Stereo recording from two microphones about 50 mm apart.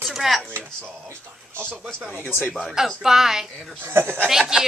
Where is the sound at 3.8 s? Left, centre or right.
Right.